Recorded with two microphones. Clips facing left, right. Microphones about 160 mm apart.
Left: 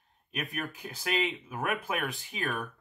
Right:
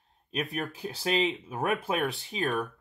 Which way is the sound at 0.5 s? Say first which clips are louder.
Right 4 dB; 30° right (ahead or behind).